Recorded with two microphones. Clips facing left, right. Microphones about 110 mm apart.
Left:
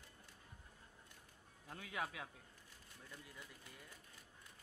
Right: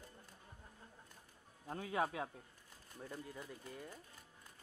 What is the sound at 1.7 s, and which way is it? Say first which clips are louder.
Speech: right 7 dB; 35° right (ahead or behind).